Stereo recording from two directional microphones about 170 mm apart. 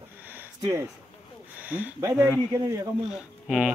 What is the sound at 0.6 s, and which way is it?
Speech, 20° right (ahead or behind).